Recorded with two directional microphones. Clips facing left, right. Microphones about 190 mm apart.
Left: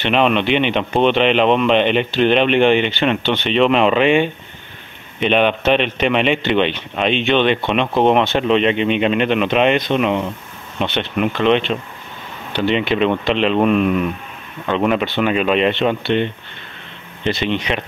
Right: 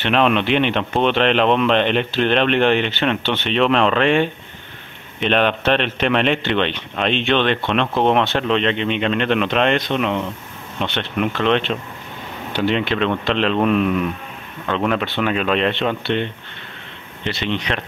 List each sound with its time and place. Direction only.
0.0 s speech: centre (ahead or behind)
17.5 s speech: centre (ahead or behind)